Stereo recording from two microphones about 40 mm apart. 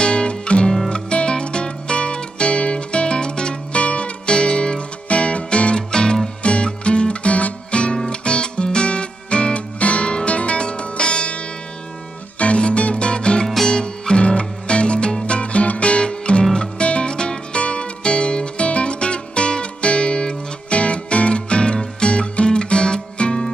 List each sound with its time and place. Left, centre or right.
0.0 s music: left